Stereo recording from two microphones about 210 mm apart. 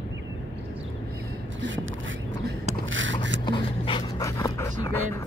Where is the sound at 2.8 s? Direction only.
65° right (ahead or behind).